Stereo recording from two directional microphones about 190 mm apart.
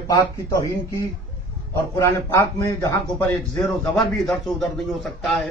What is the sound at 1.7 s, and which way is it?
A man's voice, 15° left (ahead or behind).